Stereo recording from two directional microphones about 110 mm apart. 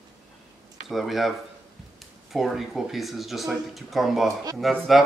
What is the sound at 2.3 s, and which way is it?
Speech, centre (ahead or behind).